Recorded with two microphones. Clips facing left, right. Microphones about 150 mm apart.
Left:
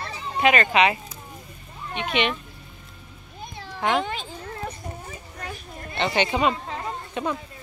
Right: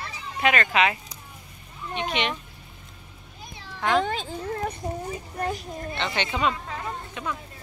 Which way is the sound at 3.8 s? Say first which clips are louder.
Even; 15° left (ahead or behind).